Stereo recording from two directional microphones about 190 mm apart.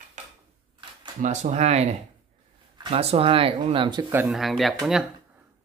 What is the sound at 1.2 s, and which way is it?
Speech, 40° right (ahead or behind).